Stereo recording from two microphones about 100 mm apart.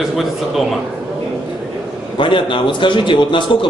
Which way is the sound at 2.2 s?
55° left (ahead or behind).